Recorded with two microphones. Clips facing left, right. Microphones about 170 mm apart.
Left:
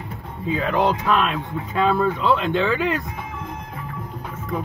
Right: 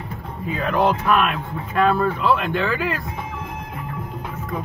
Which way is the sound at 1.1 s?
10° right (ahead or behind).